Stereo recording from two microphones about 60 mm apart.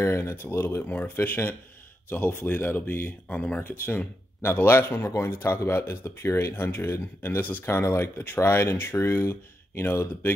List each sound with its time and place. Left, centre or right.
0.0 s speech: left
0.4 s speech: left
3.3 s speech: left